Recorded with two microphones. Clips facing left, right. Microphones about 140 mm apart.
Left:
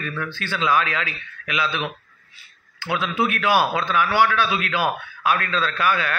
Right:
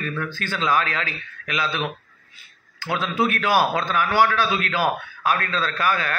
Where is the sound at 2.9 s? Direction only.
40° right (ahead or behind).